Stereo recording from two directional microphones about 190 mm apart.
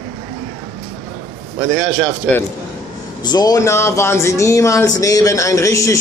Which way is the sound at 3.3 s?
20° left (ahead or behind).